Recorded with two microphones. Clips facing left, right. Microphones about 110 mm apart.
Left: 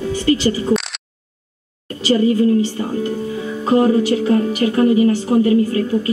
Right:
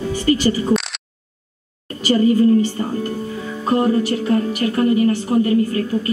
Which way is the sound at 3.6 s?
5° left (ahead or behind).